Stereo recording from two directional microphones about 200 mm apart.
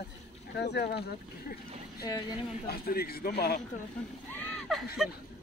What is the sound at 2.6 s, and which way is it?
Speech, 50° left (ahead or behind).